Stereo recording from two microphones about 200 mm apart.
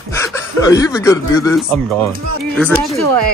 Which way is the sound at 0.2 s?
15° left (ahead or behind).